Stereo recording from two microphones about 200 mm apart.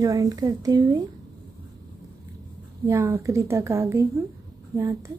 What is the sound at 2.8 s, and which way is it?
Speech, 15° right (ahead or behind).